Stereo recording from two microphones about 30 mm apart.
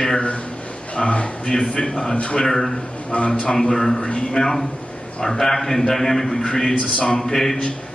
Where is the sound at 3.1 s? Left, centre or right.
Left.